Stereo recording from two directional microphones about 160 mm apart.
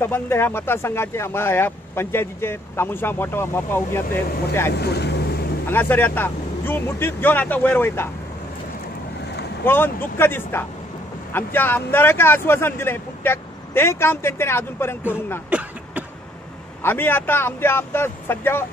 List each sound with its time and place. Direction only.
0.0 s speech: 15° left (ahead or behind)
4.7 s speech: 90° left
5.7 s speech: 10° left (ahead or behind)
9.7 s speech: 15° left (ahead or behind)
15.5 s a sound: 10° right (ahead or behind)
16.8 s speech: 15° left (ahead or behind)